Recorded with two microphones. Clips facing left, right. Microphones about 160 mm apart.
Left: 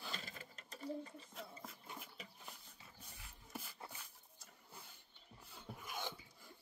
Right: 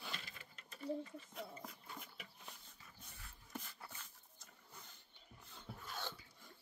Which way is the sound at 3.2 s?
10° left (ahead or behind).